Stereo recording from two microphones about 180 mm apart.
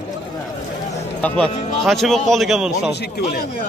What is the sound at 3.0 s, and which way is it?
Speech, 55° left (ahead or behind).